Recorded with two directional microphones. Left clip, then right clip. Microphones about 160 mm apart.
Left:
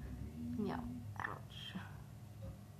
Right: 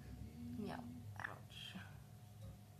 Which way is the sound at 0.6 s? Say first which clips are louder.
Left 6 dB; 15° right (ahead or behind).